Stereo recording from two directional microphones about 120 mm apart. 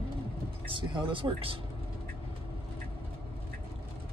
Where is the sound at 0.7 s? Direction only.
45° right (ahead or behind).